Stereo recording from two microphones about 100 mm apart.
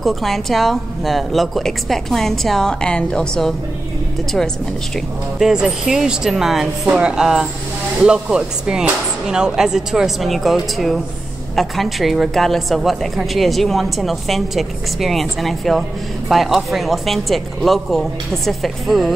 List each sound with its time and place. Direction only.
0.0 s a woman's voice: centre (ahead or behind)
5.4 s a woman's voice: 5° right (ahead or behind)